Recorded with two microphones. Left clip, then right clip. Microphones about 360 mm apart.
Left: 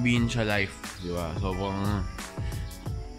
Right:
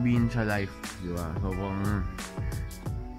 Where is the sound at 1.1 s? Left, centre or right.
Centre.